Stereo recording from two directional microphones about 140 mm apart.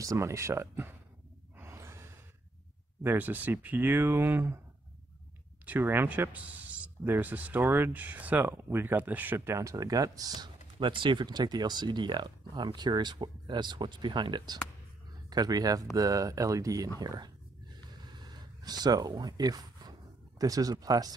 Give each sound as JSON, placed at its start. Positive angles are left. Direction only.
{"t": 0.0, "sound": "speech", "side_deg": -25}
{"t": 1.6, "sound": "sigh", "side_deg": -20}
{"t": 3.0, "sound": "speech", "side_deg": -15}
{"t": 5.7, "sound": "speech", "side_deg": -15}
{"t": 18.1, "sound": "a sound", "side_deg": -30}